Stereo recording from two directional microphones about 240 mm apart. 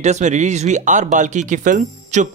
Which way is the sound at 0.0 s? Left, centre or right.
Right.